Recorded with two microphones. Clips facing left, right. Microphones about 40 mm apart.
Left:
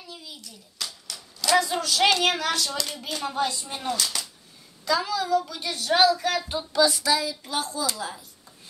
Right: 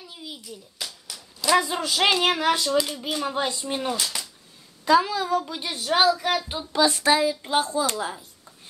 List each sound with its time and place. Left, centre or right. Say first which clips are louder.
0.1 s hands: right 4 dB; right
1.4 s speech: right 1 dB; centre
4.8 s speech: right 5 dB; right
6.7 s speech: right 2 dB; right